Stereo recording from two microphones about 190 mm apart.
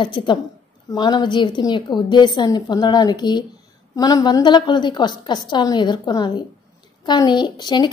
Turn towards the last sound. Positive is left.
turn(degrees=25)  # may be behind; listen again after turning